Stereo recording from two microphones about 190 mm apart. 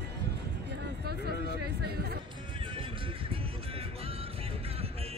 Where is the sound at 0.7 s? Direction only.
60° right (ahead or behind).